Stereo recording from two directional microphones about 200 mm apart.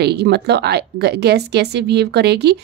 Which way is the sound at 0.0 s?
55° right (ahead or behind).